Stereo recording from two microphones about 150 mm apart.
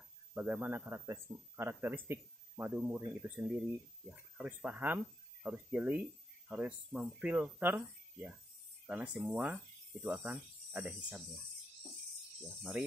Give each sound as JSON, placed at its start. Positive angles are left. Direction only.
{"t": 0.3, "sound": "speech", "side_deg": -10}